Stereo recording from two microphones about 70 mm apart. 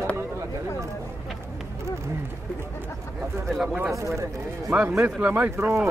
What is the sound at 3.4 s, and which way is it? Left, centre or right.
Speech, centre.